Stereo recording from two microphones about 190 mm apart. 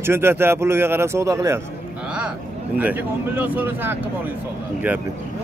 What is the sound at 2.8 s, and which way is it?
A man's voice, 10° right (ahead or behind).